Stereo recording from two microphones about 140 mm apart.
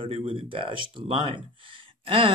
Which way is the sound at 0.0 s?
40° right (ahead or behind).